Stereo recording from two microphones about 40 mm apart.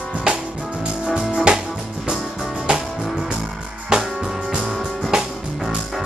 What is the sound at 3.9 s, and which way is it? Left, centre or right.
Music, centre.